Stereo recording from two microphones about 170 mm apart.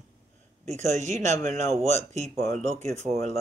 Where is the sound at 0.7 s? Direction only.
40° right (ahead or behind).